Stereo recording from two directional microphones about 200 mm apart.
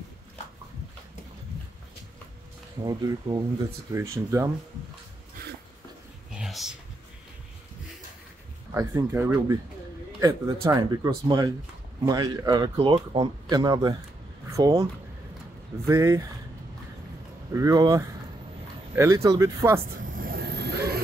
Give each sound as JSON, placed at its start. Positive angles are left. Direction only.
{"t": 2.8, "sound": "speech", "side_deg": -20}
{"t": 6.3, "sound": "a sound", "side_deg": 0}
{"t": 8.7, "sound": "speech", "side_deg": -10}
{"t": 15.9, "sound": "speech", "side_deg": -15}
{"t": 17.6, "sound": "speech", "side_deg": -15}
{"t": 19.8, "sound": "vehicle", "side_deg": -45}